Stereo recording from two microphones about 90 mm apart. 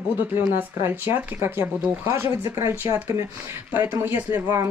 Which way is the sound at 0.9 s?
25° right (ahead or behind).